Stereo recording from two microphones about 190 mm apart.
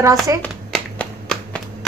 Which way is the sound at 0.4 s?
5° left (ahead or behind).